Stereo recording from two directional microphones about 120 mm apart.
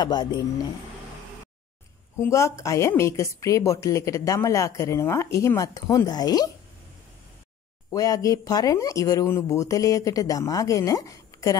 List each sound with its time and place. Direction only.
0.0 s speech: 35° left (ahead or behind)
2.1 s a woman's voice: 25° left (ahead or behind)
7.9 s a woman's voice: 30° left (ahead or behind)